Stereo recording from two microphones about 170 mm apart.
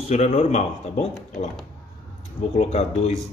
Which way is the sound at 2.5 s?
40° left (ahead or behind).